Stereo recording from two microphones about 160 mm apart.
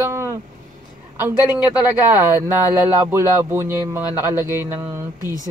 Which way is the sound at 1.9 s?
15° right (ahead or behind).